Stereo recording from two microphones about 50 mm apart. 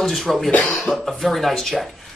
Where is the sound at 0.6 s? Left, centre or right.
Centre.